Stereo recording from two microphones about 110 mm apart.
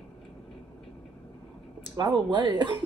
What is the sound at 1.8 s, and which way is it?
Speech, 40° right (ahead or behind).